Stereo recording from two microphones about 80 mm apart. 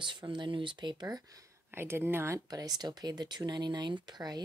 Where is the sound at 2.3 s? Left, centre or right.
Right.